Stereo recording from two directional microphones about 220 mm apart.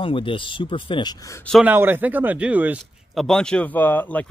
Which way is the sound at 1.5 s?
5° right (ahead or behind).